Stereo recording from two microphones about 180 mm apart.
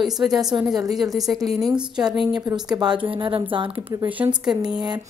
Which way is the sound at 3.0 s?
30° right (ahead or behind).